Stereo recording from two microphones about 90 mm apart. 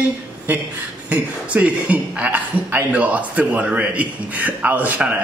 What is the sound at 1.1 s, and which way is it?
A man's voice, 15° right (ahead or behind).